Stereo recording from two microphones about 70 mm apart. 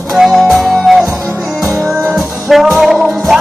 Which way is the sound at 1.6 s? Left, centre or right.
Right.